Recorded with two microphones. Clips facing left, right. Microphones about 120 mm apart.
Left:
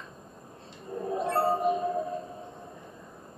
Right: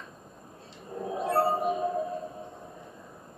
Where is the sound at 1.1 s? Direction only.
5° right (ahead or behind).